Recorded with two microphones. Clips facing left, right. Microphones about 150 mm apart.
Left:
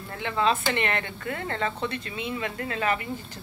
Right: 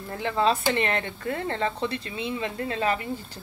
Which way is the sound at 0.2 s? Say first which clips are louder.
Right 1 dB; 35° right (ahead or behind).